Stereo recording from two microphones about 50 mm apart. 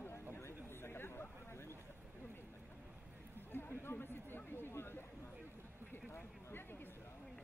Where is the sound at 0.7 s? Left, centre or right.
Left.